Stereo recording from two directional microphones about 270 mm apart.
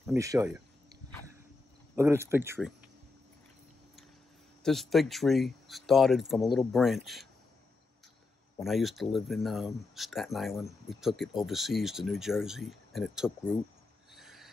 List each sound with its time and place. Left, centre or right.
0.0 s cricket: centre
2.0 s speech: centre
4.6 s speech: centre
8.5 s speech: centre
14.1 s filing: centre